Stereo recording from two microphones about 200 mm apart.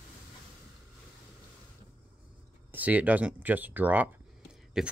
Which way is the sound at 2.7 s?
10° right (ahead or behind).